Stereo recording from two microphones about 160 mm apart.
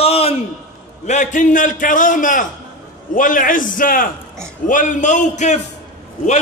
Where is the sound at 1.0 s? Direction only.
50° left (ahead or behind).